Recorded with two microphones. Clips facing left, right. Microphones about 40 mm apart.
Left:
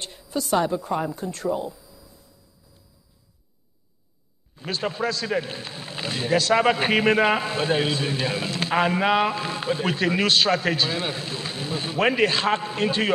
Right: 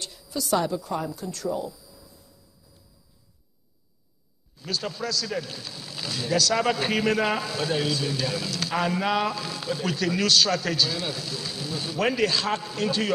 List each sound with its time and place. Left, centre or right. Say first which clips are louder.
0.0 s speech: left 3 dB; left
4.6 s a man's voice: left 4 dB; left